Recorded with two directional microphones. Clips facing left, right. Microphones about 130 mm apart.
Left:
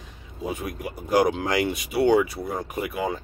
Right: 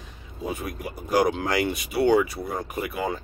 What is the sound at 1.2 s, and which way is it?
Speech, 15° left (ahead or behind).